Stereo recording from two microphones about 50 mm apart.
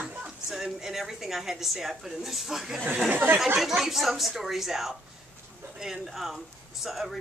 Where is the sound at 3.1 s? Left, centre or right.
Right.